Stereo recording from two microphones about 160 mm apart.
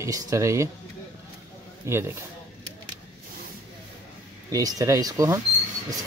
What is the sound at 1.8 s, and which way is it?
Speech, 15° right (ahead or behind).